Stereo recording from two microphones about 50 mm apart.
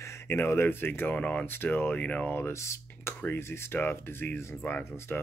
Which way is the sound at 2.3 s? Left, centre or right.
Left.